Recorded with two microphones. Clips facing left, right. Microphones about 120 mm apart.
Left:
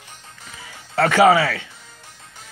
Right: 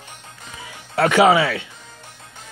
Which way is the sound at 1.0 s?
15° right (ahead or behind).